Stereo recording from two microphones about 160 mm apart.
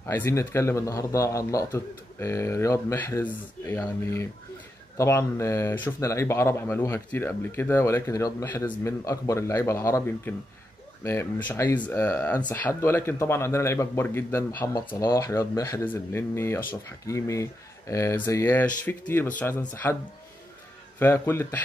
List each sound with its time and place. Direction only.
0.0 s speech: 15° left (ahead or behind)
21.0 s speech: 15° left (ahead or behind)